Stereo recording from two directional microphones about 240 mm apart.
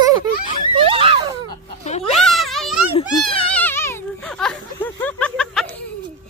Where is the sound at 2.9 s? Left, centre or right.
Left.